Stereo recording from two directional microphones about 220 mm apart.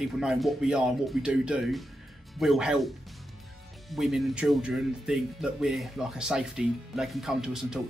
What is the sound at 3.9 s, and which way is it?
Speech, centre (ahead or behind).